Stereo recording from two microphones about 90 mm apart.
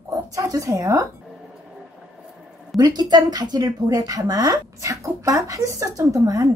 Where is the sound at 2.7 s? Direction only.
50° right (ahead or behind).